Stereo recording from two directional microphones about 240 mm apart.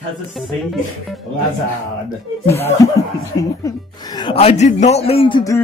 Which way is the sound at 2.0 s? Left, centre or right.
Centre.